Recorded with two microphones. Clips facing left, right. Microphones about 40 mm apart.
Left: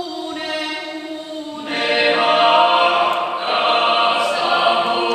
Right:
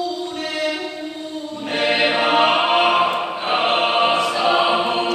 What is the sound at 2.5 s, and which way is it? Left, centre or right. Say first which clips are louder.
Music: left 3 dB; centre.